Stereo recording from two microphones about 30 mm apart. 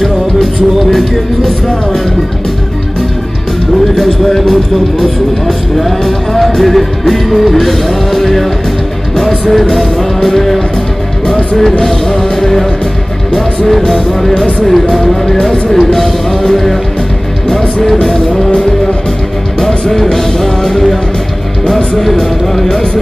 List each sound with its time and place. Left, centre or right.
0.8 s music: centre
3.9 s speech: centre
4.3 s music: centre
9.5 s music: centre
12.2 s music: centre
13.7 s music: centre
19.6 s music: centre
22.5 s music: centre